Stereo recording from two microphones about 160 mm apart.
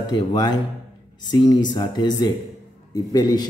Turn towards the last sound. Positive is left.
turn(degrees=25)  # may be behind; listen again after turning